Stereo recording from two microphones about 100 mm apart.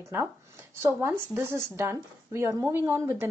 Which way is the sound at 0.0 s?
25° right (ahead or behind).